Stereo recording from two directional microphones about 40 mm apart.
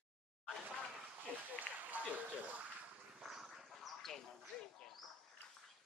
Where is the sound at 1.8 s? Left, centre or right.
Right.